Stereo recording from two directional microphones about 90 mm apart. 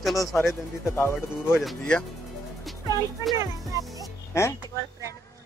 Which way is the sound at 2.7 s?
Centre (ahead or behind).